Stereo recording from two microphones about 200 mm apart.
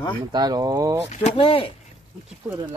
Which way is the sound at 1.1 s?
30° left (ahead or behind).